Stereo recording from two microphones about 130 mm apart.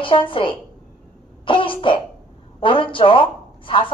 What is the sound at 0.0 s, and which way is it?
A woman's voice, 40° left (ahead or behind).